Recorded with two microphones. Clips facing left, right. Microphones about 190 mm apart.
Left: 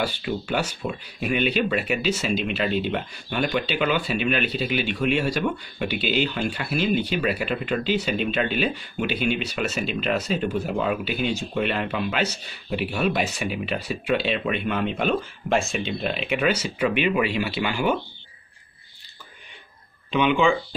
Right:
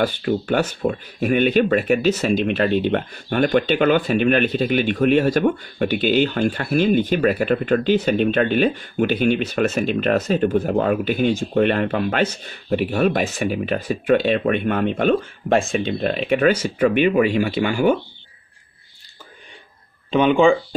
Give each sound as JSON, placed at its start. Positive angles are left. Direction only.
{"t": 0.0, "sound": "speech", "side_deg": -50}
{"t": 20.1, "sound": "speech", "side_deg": -45}